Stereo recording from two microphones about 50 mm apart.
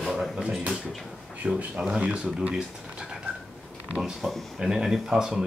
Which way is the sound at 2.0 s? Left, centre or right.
Right.